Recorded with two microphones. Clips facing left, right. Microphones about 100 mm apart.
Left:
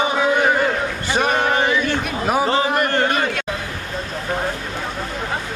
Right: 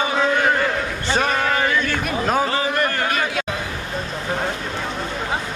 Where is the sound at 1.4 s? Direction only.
25° left (ahead or behind).